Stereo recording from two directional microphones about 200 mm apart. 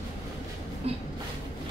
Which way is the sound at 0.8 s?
30° right (ahead or behind).